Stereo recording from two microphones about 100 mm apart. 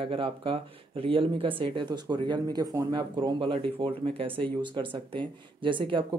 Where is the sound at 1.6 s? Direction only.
50° right (ahead or behind); by 4.3 s 65° right (ahead or behind).